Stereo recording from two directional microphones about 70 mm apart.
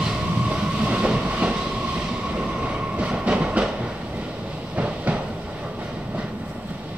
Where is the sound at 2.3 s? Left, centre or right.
Centre.